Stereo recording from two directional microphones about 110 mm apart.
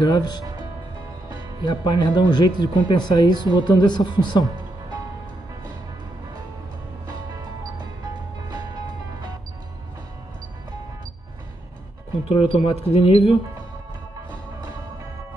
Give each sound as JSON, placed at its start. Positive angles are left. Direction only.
{"t": 0.0, "sound": "speech", "side_deg": 40}
{"t": 1.6, "sound": "speech", "side_deg": 40}
{"t": 12.3, "sound": "speech", "side_deg": 55}